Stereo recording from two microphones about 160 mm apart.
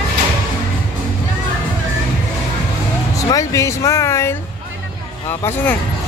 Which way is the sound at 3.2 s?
20° left (ahead or behind).